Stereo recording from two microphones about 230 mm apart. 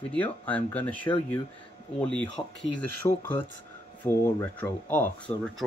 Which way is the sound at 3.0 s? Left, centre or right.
Centre.